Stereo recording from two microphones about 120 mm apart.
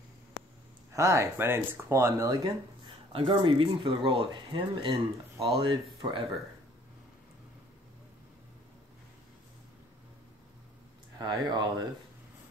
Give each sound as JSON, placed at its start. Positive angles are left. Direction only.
{"t": 0.9, "sound": "speech", "side_deg": -25}
{"t": 3.1, "sound": "speech", "side_deg": -45}
{"t": 11.1, "sound": "speech", "side_deg": -35}